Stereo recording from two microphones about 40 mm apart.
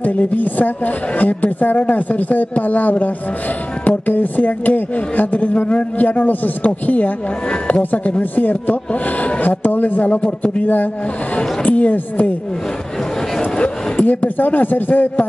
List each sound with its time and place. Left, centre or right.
0.0 s a woman's voice: left
8.2 s a woman's voice: left
11.3 s speech: left
13.9 s a woman's voice: left